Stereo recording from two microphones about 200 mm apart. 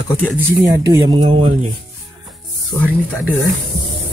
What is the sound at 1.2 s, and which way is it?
Speech, 30° right (ahead or behind).